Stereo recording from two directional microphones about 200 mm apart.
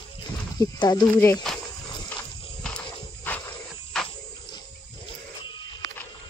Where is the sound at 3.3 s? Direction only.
10° left (ahead or behind).